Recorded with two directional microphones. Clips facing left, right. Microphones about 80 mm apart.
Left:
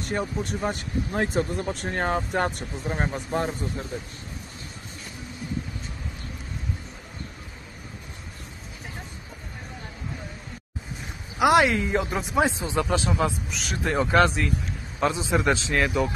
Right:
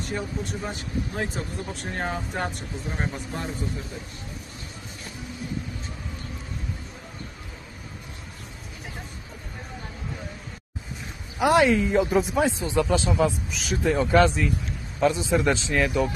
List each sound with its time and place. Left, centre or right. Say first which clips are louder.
0.0 s speech: left 2 dB; left
11.3 s speech: even; centre
12.4 s speech: right 1 dB; centre
12.8 s speech: right 2 dB; centre